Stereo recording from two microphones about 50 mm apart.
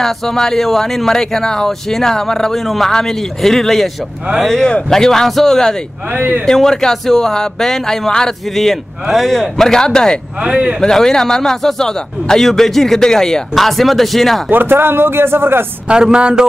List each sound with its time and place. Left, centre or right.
0.0 s speech: centre
6.1 s speech: right
6.4 s speech: centre
10.4 s a man's voice: right
10.8 s speech: centre
14.5 s speech: right
15.9 s speech: centre